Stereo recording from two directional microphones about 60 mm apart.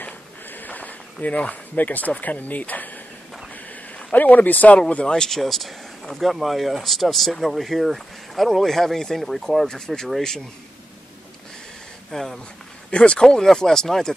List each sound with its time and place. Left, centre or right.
0.0 s a sound: left
4.7 s speech: centre
12.1 s speech: centre
12.9 s speech: centre